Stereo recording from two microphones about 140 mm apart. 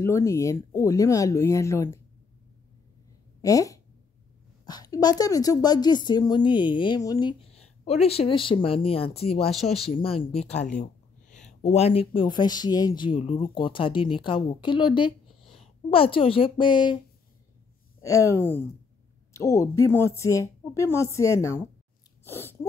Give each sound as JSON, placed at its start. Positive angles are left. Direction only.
{"t": 0.0, "sound": "speech", "side_deg": 20}
{"t": 3.4, "sound": "speech", "side_deg": 25}
{"t": 7.5, "sound": "speech", "side_deg": 50}
{"t": 11.6, "sound": "speech", "side_deg": 45}
{"t": 18.0, "sound": "speech", "side_deg": 25}
{"t": 22.2, "sound": "wheeze", "side_deg": 15}